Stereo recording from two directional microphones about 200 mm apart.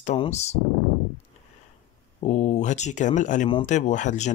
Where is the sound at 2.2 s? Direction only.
35° left (ahead or behind).